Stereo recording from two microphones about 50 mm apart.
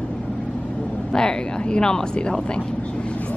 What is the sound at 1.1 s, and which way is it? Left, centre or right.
Speech, centre.